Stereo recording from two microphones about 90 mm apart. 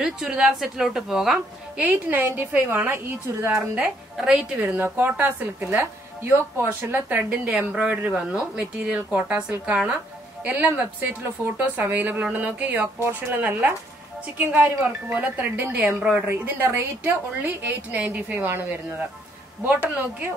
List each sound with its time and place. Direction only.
0.0 s a woman's voice: 5° right (ahead or behind)
1.9 s a woman's voice: 20° right (ahead or behind)
3.5 s speech: 10° right (ahead or behind)
4.7 s a woman's voice: 20° right (ahead or behind)
12.8 s a woman's voice: 25° right (ahead or behind)
13.4 s a woman's voice: 15° right (ahead or behind)